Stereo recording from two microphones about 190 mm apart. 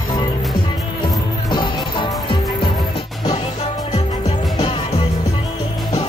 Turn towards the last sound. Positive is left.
turn(degrees=30)  # may be behind; listen again after turning